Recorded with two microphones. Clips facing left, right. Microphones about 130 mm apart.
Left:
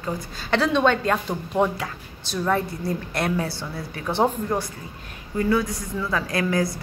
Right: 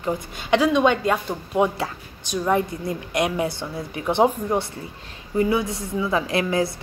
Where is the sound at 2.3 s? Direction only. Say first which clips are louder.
Right 2 dB; 15° right (ahead or behind).